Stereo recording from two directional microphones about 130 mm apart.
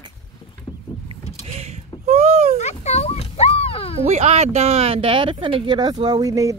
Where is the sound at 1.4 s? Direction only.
55° right (ahead or behind).